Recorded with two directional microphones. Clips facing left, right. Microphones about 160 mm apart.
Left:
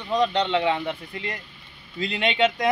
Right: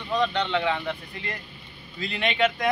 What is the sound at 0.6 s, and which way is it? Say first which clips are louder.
Speech: left 3 dB; 20° left (ahead or behind).